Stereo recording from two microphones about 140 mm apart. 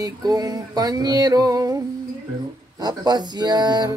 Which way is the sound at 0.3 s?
30° right (ahead or behind).